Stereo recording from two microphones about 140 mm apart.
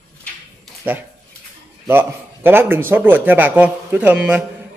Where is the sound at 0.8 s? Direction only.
10° right (ahead or behind).